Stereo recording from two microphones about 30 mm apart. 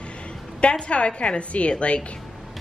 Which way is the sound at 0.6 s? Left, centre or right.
Left.